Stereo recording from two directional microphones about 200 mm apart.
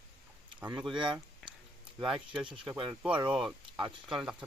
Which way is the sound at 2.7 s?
5° right (ahead or behind).